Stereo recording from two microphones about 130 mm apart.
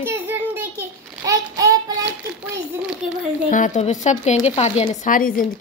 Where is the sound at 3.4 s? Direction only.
80° left; by 4.8 s 55° left (ahead or behind).